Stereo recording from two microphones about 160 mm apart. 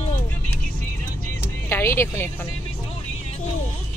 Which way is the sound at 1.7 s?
15° left (ahead or behind).